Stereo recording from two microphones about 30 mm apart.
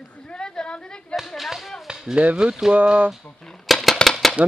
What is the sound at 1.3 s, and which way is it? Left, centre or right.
Tap, centre.